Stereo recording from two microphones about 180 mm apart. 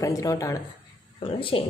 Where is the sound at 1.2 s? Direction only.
30° left (ahead or behind).